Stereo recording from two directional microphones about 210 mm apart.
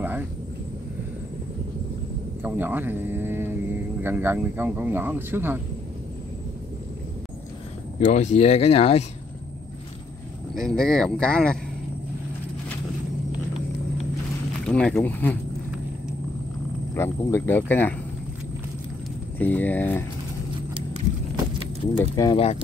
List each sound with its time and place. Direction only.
0.0 s a sound: 10° right (ahead or behind)
2.4 s speech: 10° right (ahead or behind)
8.0 s speech: 35° left (ahead or behind)
10.5 s speech: centre (ahead or behind)
14.7 s speech: 5° left (ahead or behind)
16.9 s speech: 10° left (ahead or behind)
19.3 s speech: 10° left (ahead or behind)
21.9 s speech: 15° left (ahead or behind)